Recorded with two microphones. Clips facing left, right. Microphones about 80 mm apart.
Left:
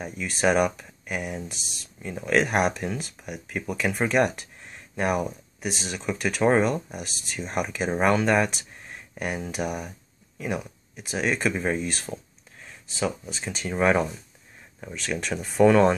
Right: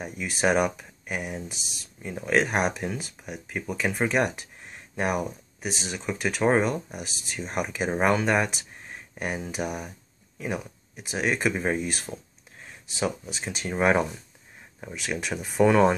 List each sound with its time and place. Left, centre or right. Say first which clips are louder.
0.0 s speech: left 1 dB; centre
13.5 s speech: left 1 dB; centre
13.7 s speech: left 1 dB; right